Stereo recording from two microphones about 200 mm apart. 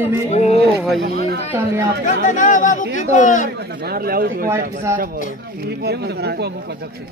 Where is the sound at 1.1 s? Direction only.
50° right (ahead or behind).